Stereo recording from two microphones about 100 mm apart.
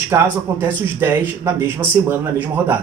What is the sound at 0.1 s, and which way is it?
Speech, 25° right (ahead or behind).